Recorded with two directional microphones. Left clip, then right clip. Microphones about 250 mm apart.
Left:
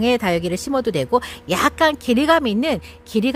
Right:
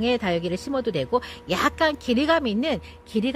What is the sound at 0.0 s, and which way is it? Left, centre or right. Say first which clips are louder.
Speech: left 5 dB; centre.